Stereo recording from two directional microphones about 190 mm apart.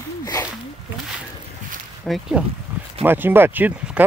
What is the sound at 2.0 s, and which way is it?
Speech, centre (ahead or behind).